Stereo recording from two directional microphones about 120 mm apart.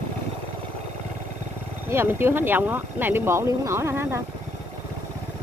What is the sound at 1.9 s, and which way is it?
Speech, 20° right (ahead or behind).